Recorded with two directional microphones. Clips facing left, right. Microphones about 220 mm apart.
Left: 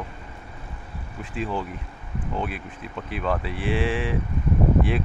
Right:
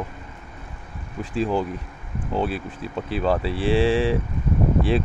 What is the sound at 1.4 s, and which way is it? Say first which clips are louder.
Speech: right 6 dB; 35° right (ahead or behind).